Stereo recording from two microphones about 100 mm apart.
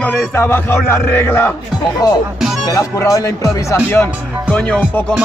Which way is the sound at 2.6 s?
35° left (ahead or behind).